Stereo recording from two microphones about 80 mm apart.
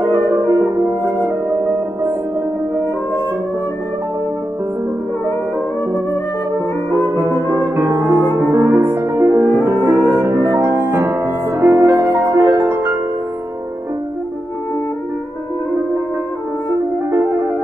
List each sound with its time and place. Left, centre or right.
0.1 s french horn: right
6.9 s music: right
9.8 s music: right
10.2 s music: right
17.1 s music: right